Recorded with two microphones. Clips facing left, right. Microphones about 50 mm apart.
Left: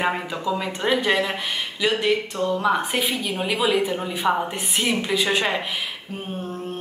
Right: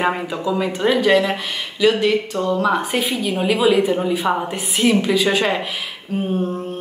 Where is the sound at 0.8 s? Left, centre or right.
Centre.